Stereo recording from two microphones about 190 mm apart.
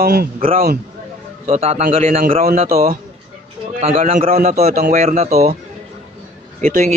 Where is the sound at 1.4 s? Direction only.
35° right (ahead or behind).